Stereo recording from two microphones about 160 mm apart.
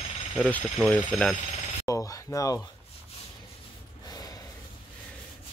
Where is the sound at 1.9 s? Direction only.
20° left (ahead or behind).